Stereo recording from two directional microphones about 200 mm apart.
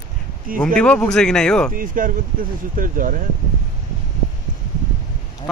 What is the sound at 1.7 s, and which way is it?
Speech, 45° right (ahead or behind).